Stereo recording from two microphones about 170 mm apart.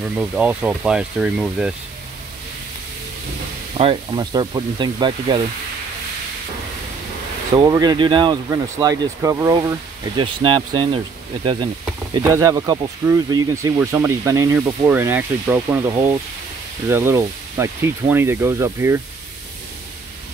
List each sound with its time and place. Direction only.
0.1 s speech: 10° right (ahead or behind)
3.7 s speech: 30° right (ahead or behind)
7.5 s speech: 20° right (ahead or behind)
9.6 s speech: 30° right (ahead or behind)
12.2 s speech: 20° right (ahead or behind)